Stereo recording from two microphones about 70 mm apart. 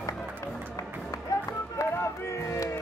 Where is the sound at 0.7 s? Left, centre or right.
Left.